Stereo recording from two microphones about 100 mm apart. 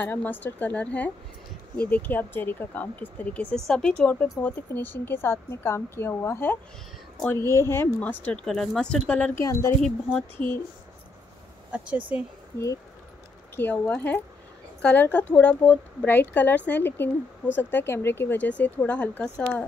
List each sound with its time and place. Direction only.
0.0 s a woman's voice: 20° left (ahead or behind)
8.0 s a woman's voice: 15° left (ahead or behind)
8.5 s a woman's voice: 5° left (ahead or behind)
9.4 s speech: 30° left (ahead or behind)
10.4 s a woman's voice: 10° left (ahead or behind)
11.7 s speech: 15° right (ahead or behind)
13.6 s a woman's voice: 15° left (ahead or behind)